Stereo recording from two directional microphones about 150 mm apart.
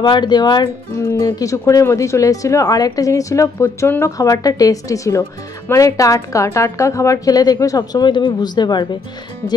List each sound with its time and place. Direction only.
0.0 s speech: 30° left (ahead or behind)
1.0 s speech: 20° left (ahead or behind)